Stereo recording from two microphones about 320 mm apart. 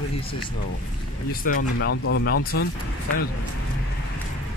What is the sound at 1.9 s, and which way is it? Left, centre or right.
Speech, left.